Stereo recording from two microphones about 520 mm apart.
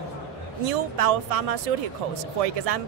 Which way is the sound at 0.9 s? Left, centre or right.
Right.